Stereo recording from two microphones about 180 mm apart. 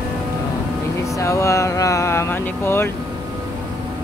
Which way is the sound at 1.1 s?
15° left (ahead or behind).